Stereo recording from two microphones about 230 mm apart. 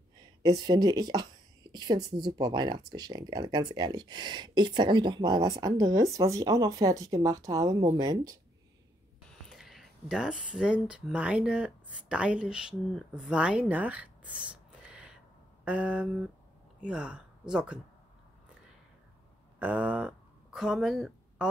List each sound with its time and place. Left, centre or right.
0.4 s speech: centre
9.3 s speech: centre
15.6 s a sound: centre
16.8 s speech: centre
19.6 s speech: centre